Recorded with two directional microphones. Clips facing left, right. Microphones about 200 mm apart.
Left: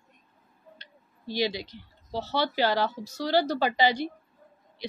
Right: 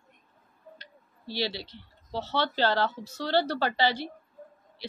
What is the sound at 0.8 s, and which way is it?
Speech, 15° left (ahead or behind).